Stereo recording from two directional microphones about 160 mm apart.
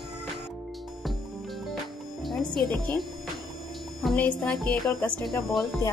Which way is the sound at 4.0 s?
5° left (ahead or behind).